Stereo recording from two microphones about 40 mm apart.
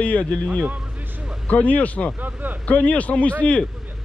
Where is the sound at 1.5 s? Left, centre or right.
Left.